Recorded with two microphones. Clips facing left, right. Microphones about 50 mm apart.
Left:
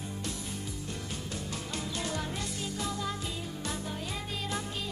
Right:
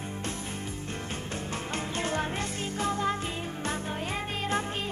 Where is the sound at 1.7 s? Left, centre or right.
Right.